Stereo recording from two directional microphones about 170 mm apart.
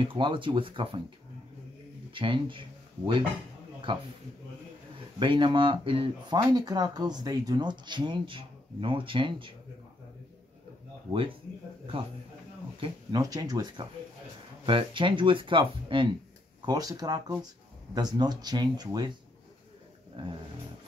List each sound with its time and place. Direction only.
0.0 s speech: 30° right (ahead or behind)
2.1 s speech: 30° right (ahead or behind)
3.9 s speech: 30° right (ahead or behind)
5.2 s speech: 30° right (ahead or behind)
11.1 s speech: 30° right (ahead or behind)
12.8 s speech: 20° right (ahead or behind)
20.2 s speech: 30° right (ahead or behind)